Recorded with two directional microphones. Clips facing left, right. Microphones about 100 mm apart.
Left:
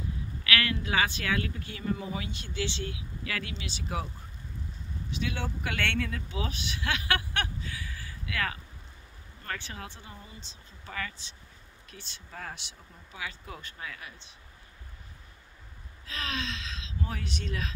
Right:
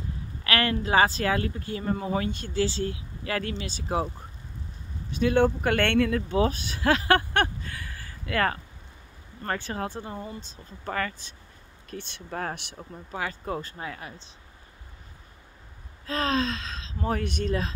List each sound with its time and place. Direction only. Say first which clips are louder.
0.4 s speech: right 4 dB; 35° right (ahead or behind)
5.1 s speech: right 13 dB; 50° right (ahead or behind)
16.1 s speech: right 10 dB; 40° right (ahead or behind)